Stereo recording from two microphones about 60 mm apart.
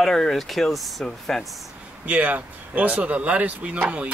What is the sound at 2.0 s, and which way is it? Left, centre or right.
Speech, right.